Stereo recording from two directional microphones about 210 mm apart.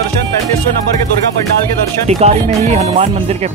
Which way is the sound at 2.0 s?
30° right (ahead or behind).